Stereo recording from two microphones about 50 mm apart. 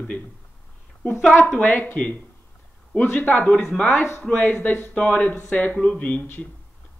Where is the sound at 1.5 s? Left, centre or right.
Left.